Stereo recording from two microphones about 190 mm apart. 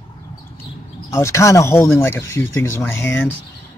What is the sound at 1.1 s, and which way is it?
Speech, 15° left (ahead or behind).